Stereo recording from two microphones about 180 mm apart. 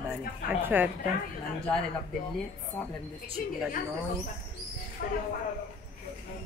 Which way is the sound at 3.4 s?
55° left (ahead or behind).